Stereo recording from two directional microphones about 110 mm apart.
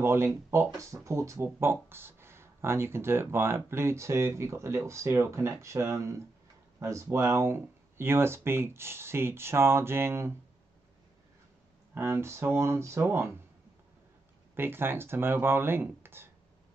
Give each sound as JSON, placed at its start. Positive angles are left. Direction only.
{"t": 0.0, "sound": "speech", "side_deg": -25}
{"t": 11.9, "sound": "speech", "side_deg": -20}
{"t": 14.5, "sound": "speech", "side_deg": -20}